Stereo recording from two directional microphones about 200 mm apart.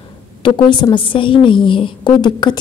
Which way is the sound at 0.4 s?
25° left (ahead or behind).